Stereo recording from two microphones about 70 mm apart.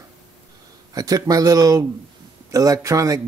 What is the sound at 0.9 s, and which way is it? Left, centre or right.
Speech, right.